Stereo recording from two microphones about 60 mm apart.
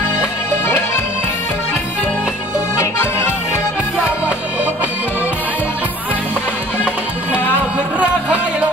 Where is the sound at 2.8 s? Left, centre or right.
Left.